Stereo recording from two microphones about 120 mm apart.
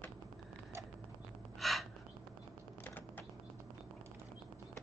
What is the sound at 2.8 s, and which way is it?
Typing, 15° left (ahead or behind).